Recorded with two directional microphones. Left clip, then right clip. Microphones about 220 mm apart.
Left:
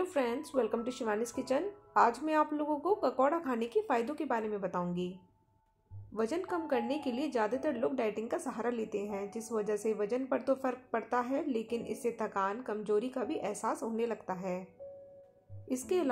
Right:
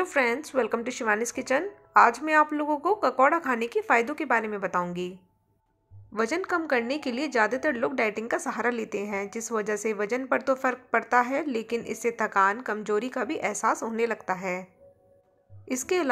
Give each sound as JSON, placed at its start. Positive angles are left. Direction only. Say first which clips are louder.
{"t": 0.0, "sound": "a woman's voice", "louder": "right 8 dB", "side_deg": -15}
{"t": 6.1, "sound": "a woman's voice", "louder": "right 8 dB", "side_deg": -15}
{"t": 15.7, "sound": "a woman's voice", "louder": "right 6 dB", "side_deg": -15}